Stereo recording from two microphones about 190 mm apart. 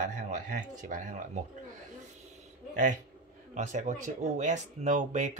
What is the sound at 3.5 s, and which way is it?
Speech, 40° right (ahead or behind).